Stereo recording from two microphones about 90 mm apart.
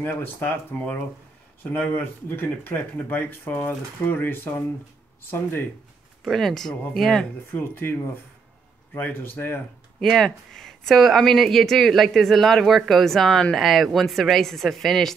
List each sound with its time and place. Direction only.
0.0 s speech: 20° left (ahead or behind)
6.2 s speech: 5° left (ahead or behind)
7.5 s speech: 25° left (ahead or behind)
9.9 s speech: 5° left (ahead or behind)